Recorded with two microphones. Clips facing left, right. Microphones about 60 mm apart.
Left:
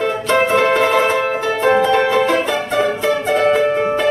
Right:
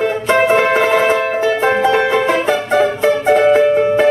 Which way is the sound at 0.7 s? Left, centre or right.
Centre.